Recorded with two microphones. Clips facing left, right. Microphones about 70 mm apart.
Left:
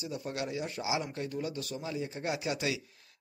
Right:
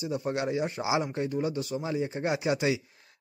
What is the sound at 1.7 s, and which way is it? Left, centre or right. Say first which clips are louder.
Speech: right 6 dB; right.